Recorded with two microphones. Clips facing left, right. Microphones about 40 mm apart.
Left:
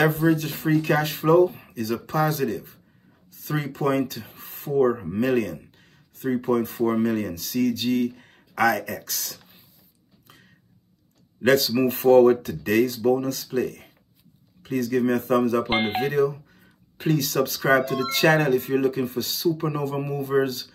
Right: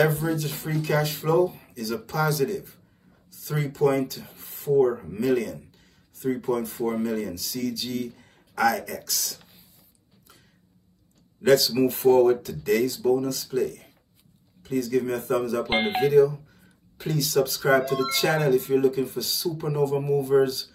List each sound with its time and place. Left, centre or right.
0.0 s speech: left
10.2 s a sound: left
11.4 s speech: left